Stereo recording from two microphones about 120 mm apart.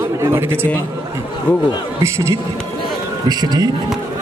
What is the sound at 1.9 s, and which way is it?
Speech, 25° right (ahead or behind).